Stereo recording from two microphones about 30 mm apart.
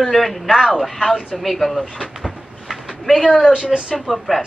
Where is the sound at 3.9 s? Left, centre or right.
Centre.